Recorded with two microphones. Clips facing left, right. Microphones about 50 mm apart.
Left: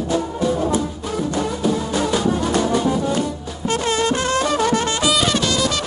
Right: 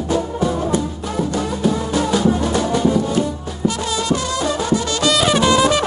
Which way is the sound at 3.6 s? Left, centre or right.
Left.